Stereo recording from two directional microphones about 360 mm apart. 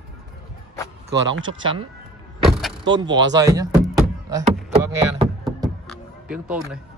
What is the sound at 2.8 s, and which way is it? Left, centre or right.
Music, centre.